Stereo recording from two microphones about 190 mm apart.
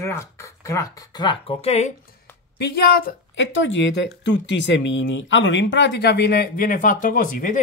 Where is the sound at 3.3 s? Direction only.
70° left (ahead or behind).